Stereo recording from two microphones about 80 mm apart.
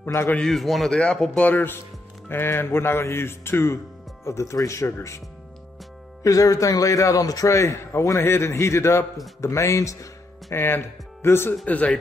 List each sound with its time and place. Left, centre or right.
0.0 s a man's voice: left
0.4 s speech: centre
1.4 s speech: left
6.2 s speech: left
10.5 s speech: left
11.6 s speech: centre